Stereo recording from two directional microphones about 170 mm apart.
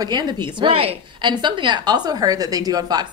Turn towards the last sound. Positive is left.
turn(degrees=-20)  # may be behind; listen again after turning